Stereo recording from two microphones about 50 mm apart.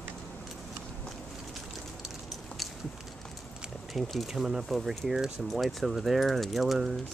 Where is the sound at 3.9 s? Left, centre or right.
Centre.